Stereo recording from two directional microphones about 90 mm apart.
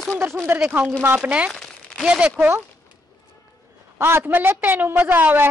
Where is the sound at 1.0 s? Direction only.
20° right (ahead or behind).